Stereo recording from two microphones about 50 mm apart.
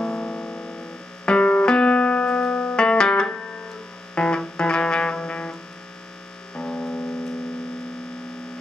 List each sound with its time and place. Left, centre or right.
0.0 s music: centre